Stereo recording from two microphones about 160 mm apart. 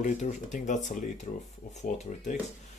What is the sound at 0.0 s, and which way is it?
Speech, 50° left (ahead or behind).